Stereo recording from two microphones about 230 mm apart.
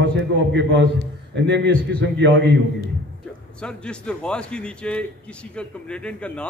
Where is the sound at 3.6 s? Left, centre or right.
Centre.